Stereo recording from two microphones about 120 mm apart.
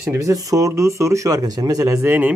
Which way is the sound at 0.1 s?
25° right (ahead or behind).